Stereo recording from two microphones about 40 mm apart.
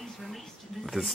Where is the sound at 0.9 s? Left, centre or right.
Centre.